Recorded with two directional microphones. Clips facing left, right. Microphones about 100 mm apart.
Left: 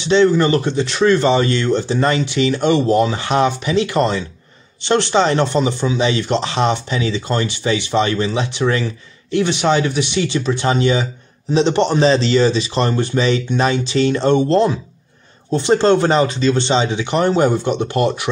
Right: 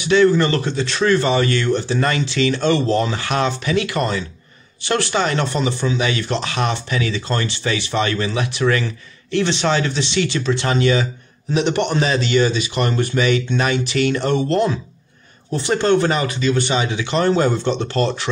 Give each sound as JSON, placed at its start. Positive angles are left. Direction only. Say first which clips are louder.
{"t": 0.0, "sound": "speech", "louder": "left 1 dB", "side_deg": 25}